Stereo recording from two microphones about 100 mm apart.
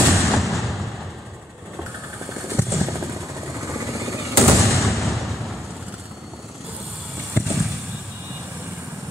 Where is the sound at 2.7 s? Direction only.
30° right (ahead or behind).